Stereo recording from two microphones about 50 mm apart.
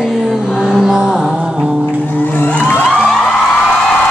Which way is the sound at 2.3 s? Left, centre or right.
Left.